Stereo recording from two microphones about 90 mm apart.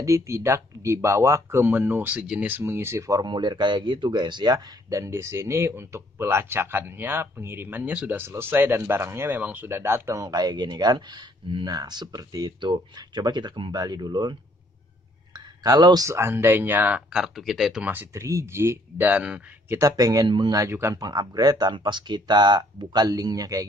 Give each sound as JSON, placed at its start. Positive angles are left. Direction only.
{"t": 0.0, "sound": "speech", "side_deg": -35}
{"t": 2.6, "sound": "speech", "side_deg": -30}
{"t": 3.2, "sound": "speech", "side_deg": -60}
{"t": 4.8, "sound": "speech", "side_deg": -35}
{"t": 8.2, "sound": "speech", "side_deg": -25}
{"t": 9.3, "sound": "speech", "side_deg": -20}
{"t": 10.2, "sound": "speech", "side_deg": -50}
{"t": 15.3, "sound": "a sound", "side_deg": -45}
{"t": 16.1, "sound": "speech", "side_deg": -30}
{"t": 17.1, "sound": "speech", "side_deg": 0}
{"t": 18.1, "sound": "speech", "side_deg": -30}
{"t": 19.7, "sound": "speech", "side_deg": -40}